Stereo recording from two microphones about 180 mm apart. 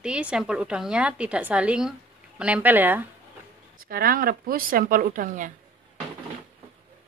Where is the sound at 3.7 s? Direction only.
55° right (ahead or behind).